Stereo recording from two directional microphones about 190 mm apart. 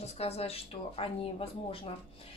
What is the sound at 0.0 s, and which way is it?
Speech, 35° left (ahead or behind).